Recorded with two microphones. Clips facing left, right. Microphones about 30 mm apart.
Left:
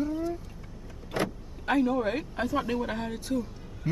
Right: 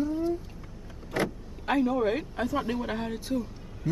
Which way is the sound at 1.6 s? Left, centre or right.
Centre.